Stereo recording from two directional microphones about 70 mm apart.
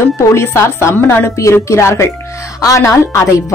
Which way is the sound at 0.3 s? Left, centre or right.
Left.